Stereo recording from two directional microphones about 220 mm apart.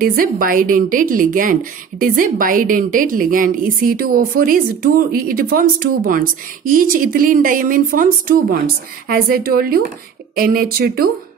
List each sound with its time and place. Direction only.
0.0 s a woman's voice: 40° right (ahead or behind)